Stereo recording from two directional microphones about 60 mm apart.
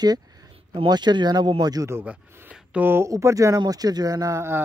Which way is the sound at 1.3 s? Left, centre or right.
Right.